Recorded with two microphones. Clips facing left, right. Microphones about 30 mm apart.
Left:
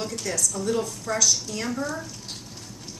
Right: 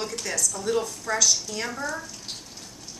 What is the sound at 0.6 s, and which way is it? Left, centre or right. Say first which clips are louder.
A woman's voice: even; centre.